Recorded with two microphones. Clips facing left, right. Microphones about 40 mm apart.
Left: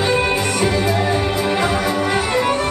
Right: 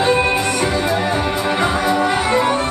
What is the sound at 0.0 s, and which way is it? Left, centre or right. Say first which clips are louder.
Music: right 2 dB; right.